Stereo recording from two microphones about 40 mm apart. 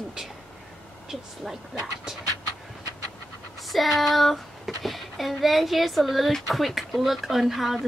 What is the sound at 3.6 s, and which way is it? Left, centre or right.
Speech, centre.